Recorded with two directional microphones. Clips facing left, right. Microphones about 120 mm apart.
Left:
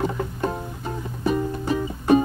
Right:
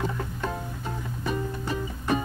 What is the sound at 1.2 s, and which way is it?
Music, 20° left (ahead or behind).